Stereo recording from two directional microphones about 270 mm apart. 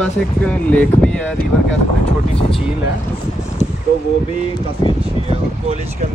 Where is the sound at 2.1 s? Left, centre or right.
Left.